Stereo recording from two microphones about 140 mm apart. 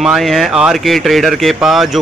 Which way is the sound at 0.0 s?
Centre (ahead or behind).